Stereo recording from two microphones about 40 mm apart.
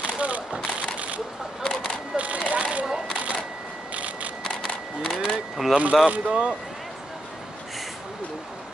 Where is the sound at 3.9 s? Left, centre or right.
Right.